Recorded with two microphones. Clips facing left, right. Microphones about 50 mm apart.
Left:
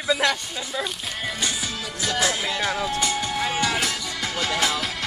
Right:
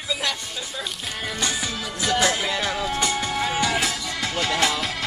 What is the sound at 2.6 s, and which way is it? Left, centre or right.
Music, left.